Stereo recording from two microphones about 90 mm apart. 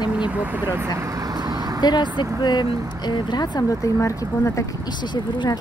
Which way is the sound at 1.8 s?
55° left (ahead or behind).